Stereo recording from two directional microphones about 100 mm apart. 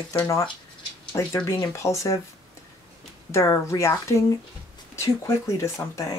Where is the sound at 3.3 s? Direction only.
30° left (ahead or behind).